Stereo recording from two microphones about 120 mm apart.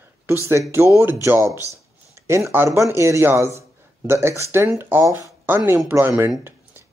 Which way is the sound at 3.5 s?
20° right (ahead or behind).